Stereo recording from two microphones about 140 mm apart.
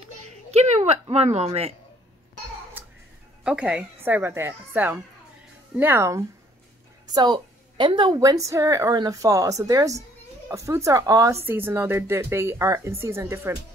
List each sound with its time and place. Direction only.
0.5 s a sound: 50° right (ahead or behind)
1.0 s speech: 50° right (ahead or behind)
3.4 s a woman's voice: 5° right (ahead or behind)
7.2 s a woman's voice: 35° right (ahead or behind); by 13.6 s 20° right (ahead or behind)